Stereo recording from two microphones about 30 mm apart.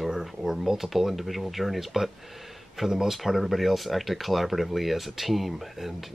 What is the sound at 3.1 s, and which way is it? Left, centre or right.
Speech, centre.